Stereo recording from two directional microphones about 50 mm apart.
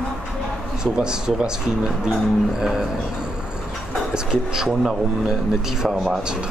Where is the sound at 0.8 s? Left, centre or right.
Centre.